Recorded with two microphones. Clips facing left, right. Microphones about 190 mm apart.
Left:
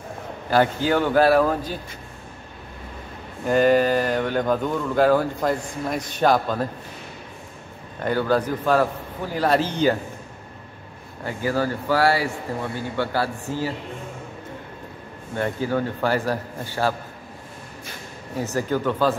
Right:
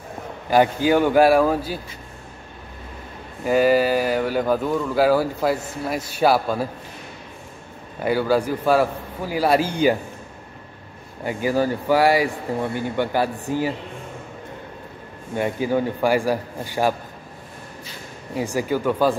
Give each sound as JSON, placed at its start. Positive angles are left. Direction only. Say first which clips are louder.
{"t": 0.5, "sound": "speech", "louder": "right 3 dB", "side_deg": -15}
{"t": 3.4, "sound": "speech", "louder": "even", "side_deg": -5}
{"t": 8.0, "sound": "speech", "louder": "right 2 dB", "side_deg": -10}
{"t": 11.2, "sound": "speech", "louder": "right 3 dB", "side_deg": -15}
{"t": 15.3, "sound": "speech", "louder": "right 2 dB", "side_deg": -15}
{"t": 18.3, "sound": "speech", "louder": "right 1 dB", "side_deg": -10}